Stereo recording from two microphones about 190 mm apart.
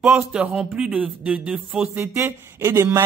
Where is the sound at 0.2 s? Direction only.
5° right (ahead or behind).